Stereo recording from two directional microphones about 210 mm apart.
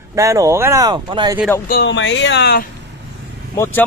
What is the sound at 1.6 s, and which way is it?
Speech, 55° left (ahead or behind).